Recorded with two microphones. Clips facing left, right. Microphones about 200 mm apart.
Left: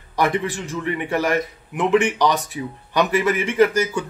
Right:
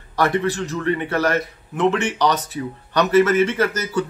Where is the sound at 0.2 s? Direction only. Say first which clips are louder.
Right 2 dB; 15° left (ahead or behind).